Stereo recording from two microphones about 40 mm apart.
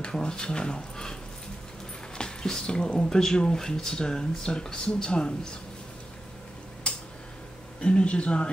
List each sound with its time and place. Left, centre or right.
0.0 s speech: centre
2.1 s speech: centre
3.1 s speech: centre
7.8 s speech: left